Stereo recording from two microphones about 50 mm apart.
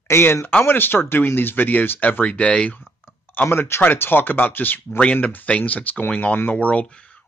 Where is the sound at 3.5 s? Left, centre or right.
Left.